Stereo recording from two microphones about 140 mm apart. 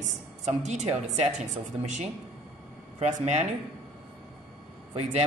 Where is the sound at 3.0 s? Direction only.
60° right (ahead or behind).